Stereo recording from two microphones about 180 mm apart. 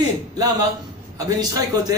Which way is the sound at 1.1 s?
20° right (ahead or behind).